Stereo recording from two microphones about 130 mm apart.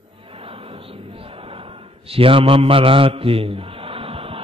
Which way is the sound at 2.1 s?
45° right (ahead or behind).